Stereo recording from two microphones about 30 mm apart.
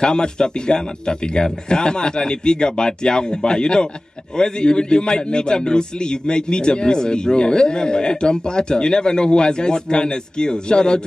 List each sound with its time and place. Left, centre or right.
0.0 s a man's voice: left